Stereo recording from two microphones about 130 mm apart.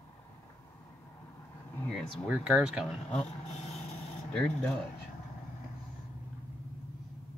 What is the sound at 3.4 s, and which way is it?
Vehicle, 55° left (ahead or behind).